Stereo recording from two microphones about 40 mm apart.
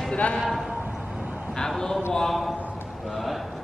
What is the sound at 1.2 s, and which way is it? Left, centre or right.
Vehicle, right.